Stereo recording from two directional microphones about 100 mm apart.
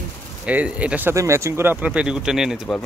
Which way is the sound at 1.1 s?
30° right (ahead or behind).